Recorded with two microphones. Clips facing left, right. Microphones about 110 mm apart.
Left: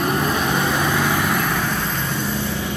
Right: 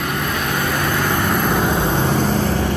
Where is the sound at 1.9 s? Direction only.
60° right (ahead or behind); by 2.7 s 90° right.